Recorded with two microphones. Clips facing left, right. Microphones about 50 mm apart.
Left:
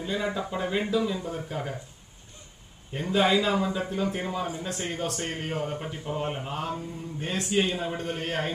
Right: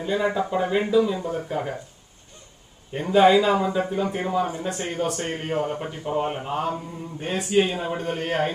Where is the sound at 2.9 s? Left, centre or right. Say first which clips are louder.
Right 7 dB; centre.